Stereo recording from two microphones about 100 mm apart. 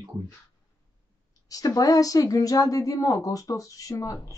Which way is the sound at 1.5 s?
35° left (ahead or behind).